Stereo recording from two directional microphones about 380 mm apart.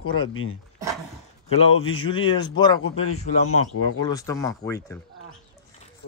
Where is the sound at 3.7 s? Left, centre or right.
Left.